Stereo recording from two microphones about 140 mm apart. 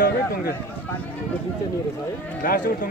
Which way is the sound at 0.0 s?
90° left.